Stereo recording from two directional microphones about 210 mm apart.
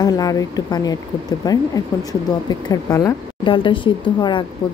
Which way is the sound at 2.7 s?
15° left (ahead or behind).